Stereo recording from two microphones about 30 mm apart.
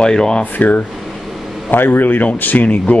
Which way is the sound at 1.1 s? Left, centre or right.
Centre.